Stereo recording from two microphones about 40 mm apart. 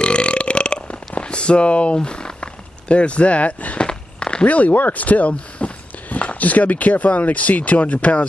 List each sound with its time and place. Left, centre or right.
0.0 s burping: left
2.0 s a sound: centre; by 3.8 s left
3.8 s walk: left
4.5 s speech: left
5.6 s a sound: left
6.4 s speech: left